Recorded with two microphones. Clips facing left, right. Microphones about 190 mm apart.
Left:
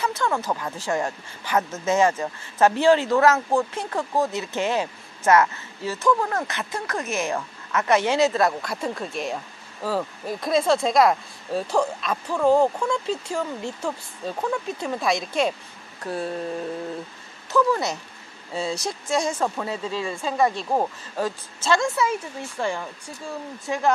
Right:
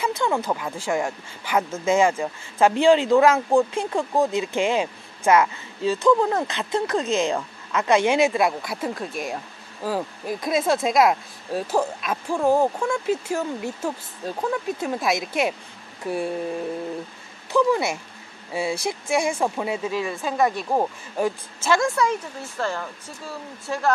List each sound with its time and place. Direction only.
0.0 s a sound: 15° right (ahead or behind)
0.5 s speech: 10° right (ahead or behind)
17.5 s speech: 10° right (ahead or behind)
21.9 s speech: 5° left (ahead or behind)